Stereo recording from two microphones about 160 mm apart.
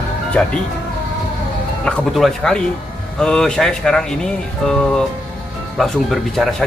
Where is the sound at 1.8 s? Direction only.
Centre (ahead or behind).